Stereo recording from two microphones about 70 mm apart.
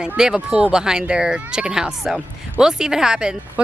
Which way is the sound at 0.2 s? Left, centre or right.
Centre.